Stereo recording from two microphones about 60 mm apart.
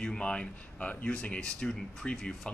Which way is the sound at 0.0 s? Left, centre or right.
Centre.